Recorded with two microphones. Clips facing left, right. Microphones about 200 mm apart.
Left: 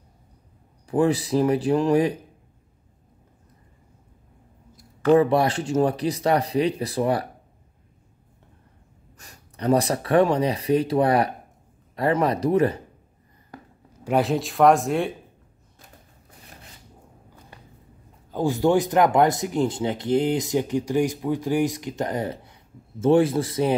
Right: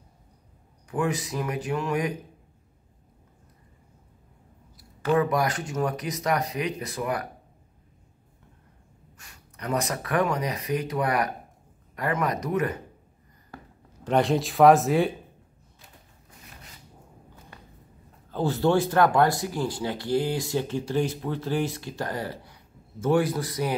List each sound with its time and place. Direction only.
0.8 s speech: 35° left (ahead or behind)
5.1 s speech: 30° left (ahead or behind)
9.2 s speech: 35° left (ahead or behind)
14.0 s speech: 5° left (ahead or behind)
18.3 s speech: 15° left (ahead or behind)